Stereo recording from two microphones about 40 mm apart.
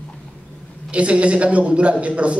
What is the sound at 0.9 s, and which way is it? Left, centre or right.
A man's voice, right.